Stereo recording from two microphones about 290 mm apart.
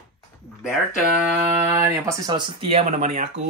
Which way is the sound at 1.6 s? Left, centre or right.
Centre.